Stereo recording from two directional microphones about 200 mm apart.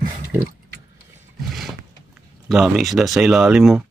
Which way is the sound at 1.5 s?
Centre (ahead or behind).